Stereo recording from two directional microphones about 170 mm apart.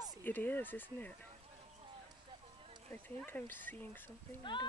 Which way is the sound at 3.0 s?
10° left (ahead or behind).